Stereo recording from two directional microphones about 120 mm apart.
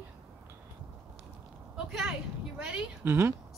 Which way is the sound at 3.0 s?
20° right (ahead or behind).